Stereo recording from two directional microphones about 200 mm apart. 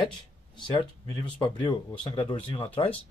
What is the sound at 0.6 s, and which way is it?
Speech, 25° left (ahead or behind).